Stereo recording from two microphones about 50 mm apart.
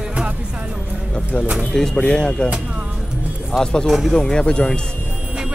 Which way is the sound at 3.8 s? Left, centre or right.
Centre.